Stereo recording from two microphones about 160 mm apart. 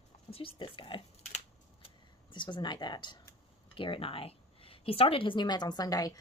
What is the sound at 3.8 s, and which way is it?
Speech, 35° left (ahead or behind).